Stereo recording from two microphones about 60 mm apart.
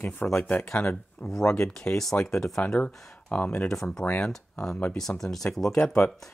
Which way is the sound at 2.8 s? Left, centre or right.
Centre.